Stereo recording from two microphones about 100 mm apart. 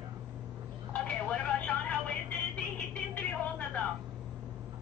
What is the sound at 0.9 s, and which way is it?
Telephone, 10° left (ahead or behind).